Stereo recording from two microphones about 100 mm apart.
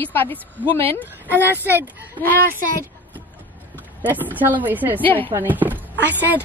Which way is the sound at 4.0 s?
15° right (ahead or behind).